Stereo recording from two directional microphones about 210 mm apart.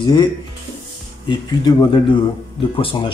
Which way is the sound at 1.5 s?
20° left (ahead or behind).